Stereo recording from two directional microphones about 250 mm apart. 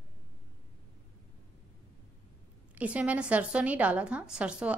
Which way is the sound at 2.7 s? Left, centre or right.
Centre.